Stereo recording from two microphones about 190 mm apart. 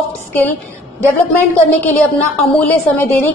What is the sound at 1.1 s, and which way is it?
A woman's voice, 10° left (ahead or behind).